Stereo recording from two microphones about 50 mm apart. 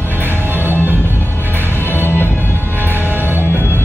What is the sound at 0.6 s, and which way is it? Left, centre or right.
Music, right.